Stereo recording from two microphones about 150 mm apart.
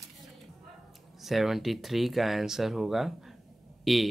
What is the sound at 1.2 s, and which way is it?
Speech, centre (ahead or behind).